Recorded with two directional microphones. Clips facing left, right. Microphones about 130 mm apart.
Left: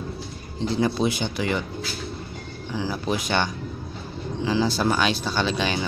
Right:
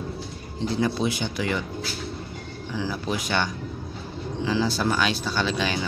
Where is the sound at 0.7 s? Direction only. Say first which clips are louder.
Left 2 dB; 25° left (ahead or behind).